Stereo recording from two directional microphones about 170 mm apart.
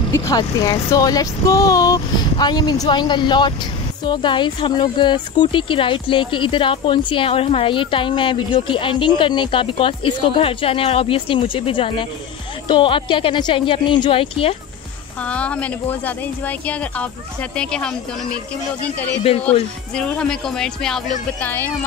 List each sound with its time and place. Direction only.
0.1 s speech: 20° left (ahead or behind)
15.2 s speech: 5° left (ahead or behind)
20.0 s speech: 5° left (ahead or behind)